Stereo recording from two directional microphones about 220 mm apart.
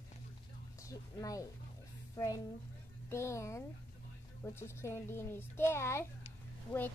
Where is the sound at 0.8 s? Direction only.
15° left (ahead or behind).